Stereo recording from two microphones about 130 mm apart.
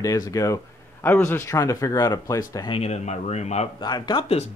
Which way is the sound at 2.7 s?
55° left (ahead or behind).